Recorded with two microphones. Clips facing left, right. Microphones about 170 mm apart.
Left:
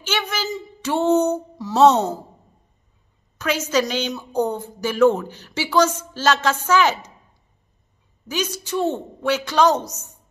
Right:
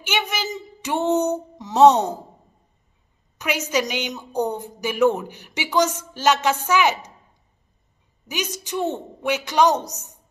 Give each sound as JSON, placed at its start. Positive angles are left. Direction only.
{"t": 0.0, "sound": "a sound", "side_deg": -15}
{"t": 3.3, "sound": "a woman's voice", "side_deg": -15}
{"t": 8.3, "sound": "a woman's voice", "side_deg": -15}